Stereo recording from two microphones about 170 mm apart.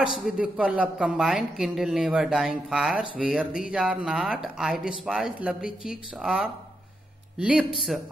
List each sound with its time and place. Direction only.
0.2 s a woman's voice: 5° right (ahead or behind)